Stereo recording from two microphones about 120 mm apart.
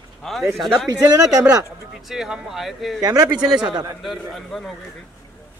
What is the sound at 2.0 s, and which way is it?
Speech, 5° right (ahead or behind).